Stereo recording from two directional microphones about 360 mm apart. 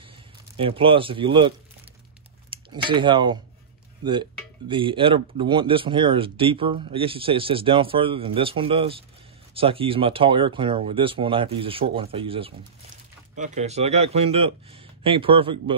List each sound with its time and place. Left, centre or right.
0.6 s speech: centre
2.5 s speech: centre